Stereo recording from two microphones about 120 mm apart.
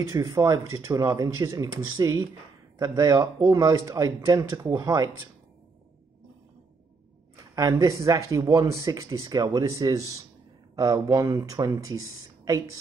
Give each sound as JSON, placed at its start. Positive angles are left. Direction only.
{"t": 0.1, "sound": "speech", "side_deg": -30}
{"t": 7.5, "sound": "speech", "side_deg": -30}